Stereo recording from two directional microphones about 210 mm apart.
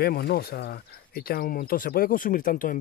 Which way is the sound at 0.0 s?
50° left (ahead or behind).